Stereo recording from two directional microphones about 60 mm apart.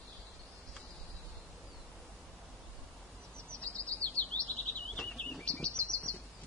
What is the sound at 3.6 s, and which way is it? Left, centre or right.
Chirp, left.